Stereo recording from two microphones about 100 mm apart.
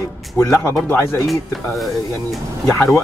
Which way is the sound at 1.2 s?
Centre (ahead or behind).